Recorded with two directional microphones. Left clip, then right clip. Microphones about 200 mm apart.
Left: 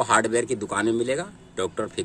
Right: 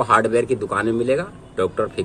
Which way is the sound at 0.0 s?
45° left (ahead or behind).